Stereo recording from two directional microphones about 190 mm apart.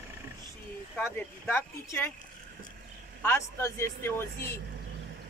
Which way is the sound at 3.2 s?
15° left (ahead or behind).